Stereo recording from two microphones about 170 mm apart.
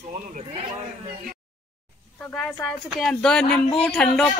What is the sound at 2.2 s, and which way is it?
Speech, 10° left (ahead or behind).